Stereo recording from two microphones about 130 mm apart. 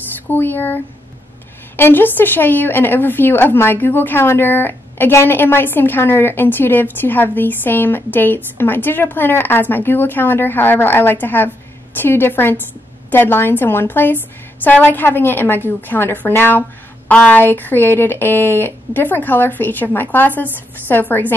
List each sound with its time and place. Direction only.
0.3 s a woman's voice: 15° left (ahead or behind)
1.8 s a woman's voice: 15° left (ahead or behind)